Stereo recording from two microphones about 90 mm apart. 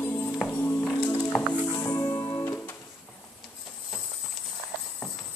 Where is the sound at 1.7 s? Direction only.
40° left (ahead or behind).